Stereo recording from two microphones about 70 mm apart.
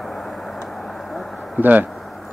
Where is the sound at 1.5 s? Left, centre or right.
Right.